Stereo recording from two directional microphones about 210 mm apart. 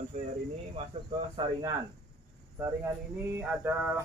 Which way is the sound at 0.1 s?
35° right (ahead or behind).